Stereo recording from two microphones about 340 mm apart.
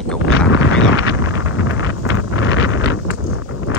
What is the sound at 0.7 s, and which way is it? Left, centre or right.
Wind noise, left.